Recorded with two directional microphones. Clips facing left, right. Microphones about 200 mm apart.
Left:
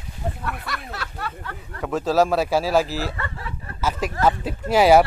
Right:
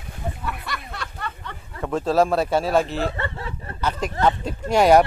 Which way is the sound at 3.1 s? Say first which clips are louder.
Right 3 dB; 30° right (ahead or behind).